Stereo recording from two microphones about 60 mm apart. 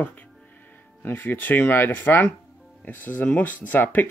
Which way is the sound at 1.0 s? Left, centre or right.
Left.